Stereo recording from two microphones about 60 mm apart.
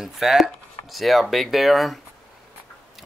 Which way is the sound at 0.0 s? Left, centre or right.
Centre.